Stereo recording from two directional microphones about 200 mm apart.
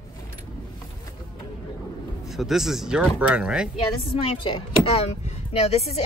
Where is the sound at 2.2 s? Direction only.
Centre (ahead or behind).